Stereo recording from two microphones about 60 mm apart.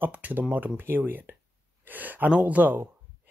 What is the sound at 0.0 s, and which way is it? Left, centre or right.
Speech, right.